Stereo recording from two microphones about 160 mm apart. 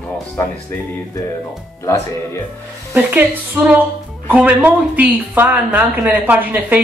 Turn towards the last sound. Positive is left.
turn(degrees=-10)  # may be behind; listen again after turning